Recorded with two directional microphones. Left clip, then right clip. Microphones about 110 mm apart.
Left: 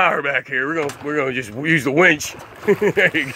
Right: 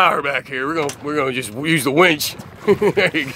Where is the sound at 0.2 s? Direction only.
40° right (ahead or behind).